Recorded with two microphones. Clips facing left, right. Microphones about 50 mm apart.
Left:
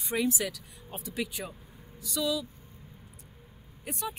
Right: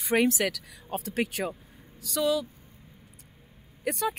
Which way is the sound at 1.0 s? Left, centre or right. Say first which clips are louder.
Right 5 dB; right.